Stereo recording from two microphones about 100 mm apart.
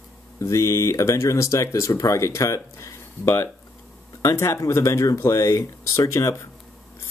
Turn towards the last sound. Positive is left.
turn(degrees=30)  # may be behind; listen again after turning